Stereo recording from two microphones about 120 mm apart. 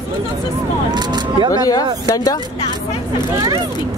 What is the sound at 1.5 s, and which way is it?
Speech, 30° left (ahead or behind).